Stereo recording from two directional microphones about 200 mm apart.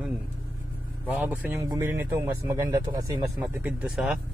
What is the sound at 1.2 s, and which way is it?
Speech, 10° right (ahead or behind).